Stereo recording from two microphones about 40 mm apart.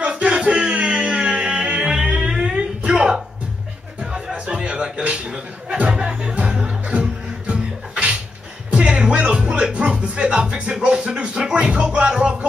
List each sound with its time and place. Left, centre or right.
0.0 s music: right
1.8 s music: centre
4.5 s music: right